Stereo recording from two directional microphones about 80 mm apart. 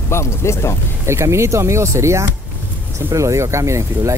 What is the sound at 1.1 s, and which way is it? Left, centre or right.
Speech, right.